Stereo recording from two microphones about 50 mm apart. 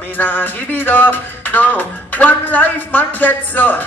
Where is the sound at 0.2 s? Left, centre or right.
Left.